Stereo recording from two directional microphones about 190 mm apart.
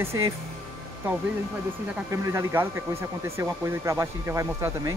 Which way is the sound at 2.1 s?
15° right (ahead or behind).